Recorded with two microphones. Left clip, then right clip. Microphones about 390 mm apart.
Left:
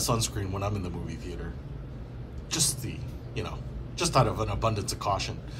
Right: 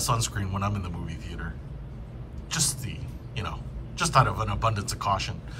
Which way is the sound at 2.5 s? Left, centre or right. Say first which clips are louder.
Even; centre.